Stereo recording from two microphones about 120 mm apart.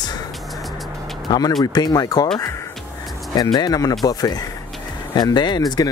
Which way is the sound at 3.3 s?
35° left (ahead or behind).